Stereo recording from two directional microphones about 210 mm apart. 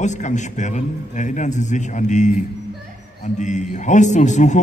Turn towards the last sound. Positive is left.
turn(degrees=35)  # may be behind; listen again after turning